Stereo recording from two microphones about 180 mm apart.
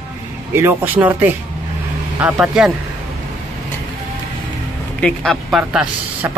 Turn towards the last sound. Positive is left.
turn(degrees=-5)  # may be behind; listen again after turning